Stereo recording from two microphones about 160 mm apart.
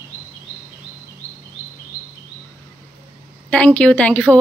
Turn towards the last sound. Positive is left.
turn(degrees=10)  # may be behind; listen again after turning